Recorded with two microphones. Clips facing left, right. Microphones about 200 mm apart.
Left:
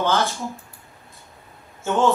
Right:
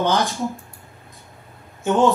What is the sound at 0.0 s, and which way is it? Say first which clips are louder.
Speech: right 2 dB; 15° right (ahead or behind).